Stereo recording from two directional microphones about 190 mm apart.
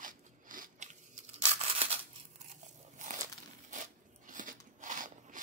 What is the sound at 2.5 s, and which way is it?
Crunch, 40° right (ahead or behind).